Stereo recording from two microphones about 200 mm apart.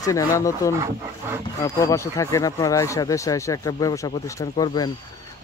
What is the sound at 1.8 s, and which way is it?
Speech, 15° left (ahead or behind).